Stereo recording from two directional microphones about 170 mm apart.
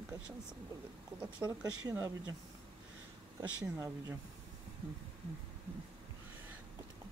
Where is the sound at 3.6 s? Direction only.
20° right (ahead or behind).